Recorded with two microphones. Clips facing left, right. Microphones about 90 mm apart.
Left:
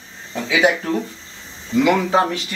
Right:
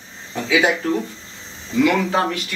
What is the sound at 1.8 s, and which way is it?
Speech, 20° left (ahead or behind).